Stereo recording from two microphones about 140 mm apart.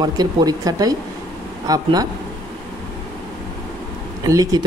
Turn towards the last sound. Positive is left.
turn(degrees=-25)  # may be behind; listen again after turning